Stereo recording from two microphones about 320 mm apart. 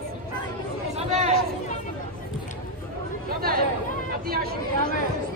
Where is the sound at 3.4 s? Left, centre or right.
Right.